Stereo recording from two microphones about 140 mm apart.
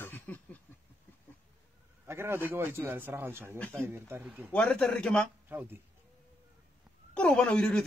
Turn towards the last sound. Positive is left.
turn(degrees=5)  # may be behind; listen again after turning